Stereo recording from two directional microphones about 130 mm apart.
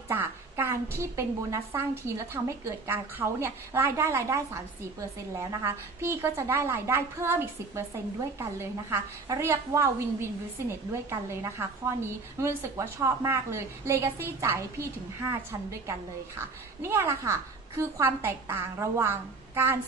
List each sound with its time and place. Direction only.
0.1 s a sound: 15° right (ahead or behind)
1.1 s a woman's voice: 20° right (ahead or behind)
5.4 s a woman's voice: 20° right (ahead or behind)